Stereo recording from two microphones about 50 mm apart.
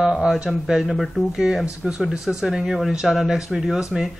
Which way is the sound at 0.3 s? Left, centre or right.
Centre.